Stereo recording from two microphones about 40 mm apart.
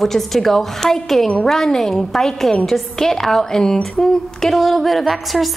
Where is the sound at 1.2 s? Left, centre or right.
Left.